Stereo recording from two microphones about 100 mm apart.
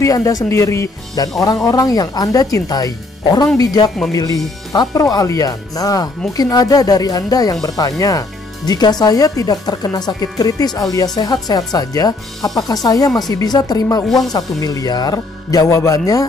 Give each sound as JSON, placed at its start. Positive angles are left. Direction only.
{"t": 0.0, "sound": "speech", "side_deg": 35}
{"t": 14.0, "sound": "speech", "side_deg": 0}
{"t": 14.3, "sound": "speech", "side_deg": 40}